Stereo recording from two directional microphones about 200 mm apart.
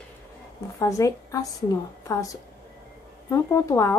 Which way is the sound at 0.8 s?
15° left (ahead or behind).